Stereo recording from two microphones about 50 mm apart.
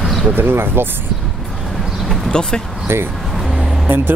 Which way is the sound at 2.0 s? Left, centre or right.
Centre.